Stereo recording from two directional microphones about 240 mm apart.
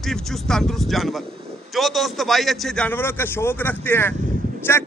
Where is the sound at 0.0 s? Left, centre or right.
Centre.